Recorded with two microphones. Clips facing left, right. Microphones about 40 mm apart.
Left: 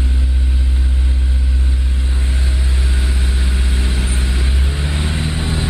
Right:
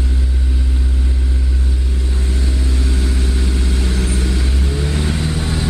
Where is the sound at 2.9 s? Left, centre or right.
Centre.